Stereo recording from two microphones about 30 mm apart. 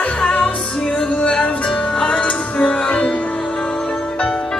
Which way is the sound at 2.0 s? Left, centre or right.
Left.